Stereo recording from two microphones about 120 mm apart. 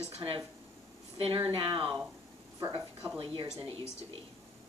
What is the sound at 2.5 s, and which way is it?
Speech, 25° right (ahead or behind).